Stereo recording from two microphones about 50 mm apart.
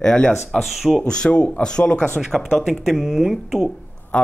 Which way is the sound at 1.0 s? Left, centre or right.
Centre.